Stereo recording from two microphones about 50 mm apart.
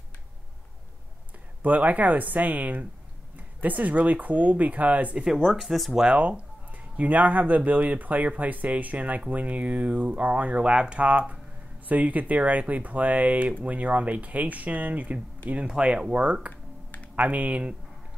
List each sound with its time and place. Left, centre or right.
1.6 s speech: right
5.1 s speech: centre
6.0 s speech: right
15.6 s speech: centre